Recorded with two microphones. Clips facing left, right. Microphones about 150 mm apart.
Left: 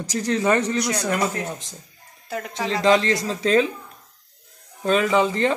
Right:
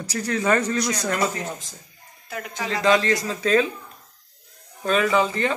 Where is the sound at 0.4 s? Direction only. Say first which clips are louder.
Even; 20° left (ahead or behind).